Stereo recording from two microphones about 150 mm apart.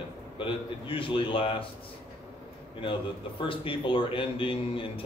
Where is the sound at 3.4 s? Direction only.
35° left (ahead or behind).